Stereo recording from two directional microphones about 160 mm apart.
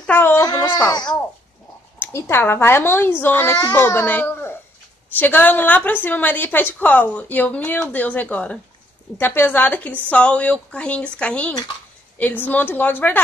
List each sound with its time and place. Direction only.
0.0 s speech: 10° left (ahead or behind)
0.4 s a child's voice: 25° left (ahead or behind)
2.0 s a woman's voice: 15° left (ahead or behind)